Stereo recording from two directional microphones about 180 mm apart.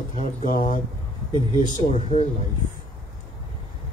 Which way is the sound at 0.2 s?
45° left (ahead or behind).